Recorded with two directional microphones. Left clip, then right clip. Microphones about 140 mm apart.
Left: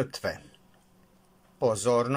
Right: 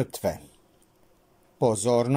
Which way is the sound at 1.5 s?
40° right (ahead or behind).